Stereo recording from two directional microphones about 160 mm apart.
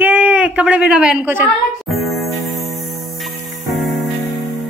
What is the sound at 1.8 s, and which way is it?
Music, centre (ahead or behind).